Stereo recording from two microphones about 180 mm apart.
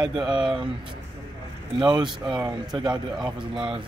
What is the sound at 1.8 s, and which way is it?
Speech, 25° right (ahead or behind).